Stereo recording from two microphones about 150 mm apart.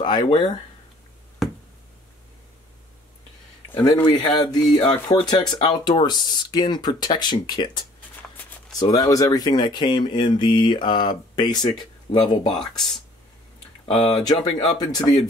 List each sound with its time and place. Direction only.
0.0 s speech: 30° left (ahead or behind)
1.4 s a sound: centre (ahead or behind)
3.7 s speech: 25° left (ahead or behind)
4.1 s speech: 40° left (ahead or behind)
4.4 s speech: 25° left (ahead or behind)
12.5 s speech: 5° left (ahead or behind)
13.9 s speech: 30° left (ahead or behind)